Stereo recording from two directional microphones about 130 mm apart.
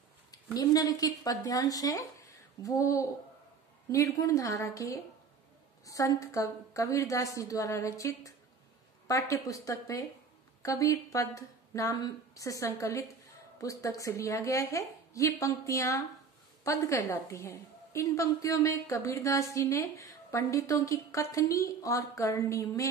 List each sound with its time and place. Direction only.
0.6 s a woman's voice: 30° left (ahead or behind)